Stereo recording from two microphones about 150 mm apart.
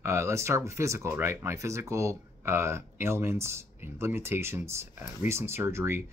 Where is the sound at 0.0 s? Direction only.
20° right (ahead or behind).